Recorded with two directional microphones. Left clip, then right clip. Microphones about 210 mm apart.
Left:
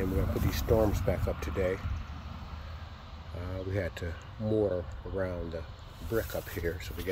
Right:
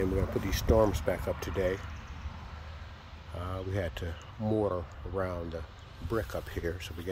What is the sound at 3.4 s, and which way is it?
Speech, 20° right (ahead or behind).